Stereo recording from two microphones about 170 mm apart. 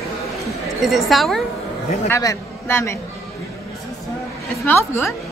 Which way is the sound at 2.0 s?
15° left (ahead or behind).